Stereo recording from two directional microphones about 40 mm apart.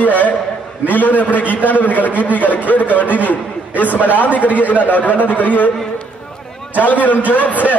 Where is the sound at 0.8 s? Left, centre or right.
Left.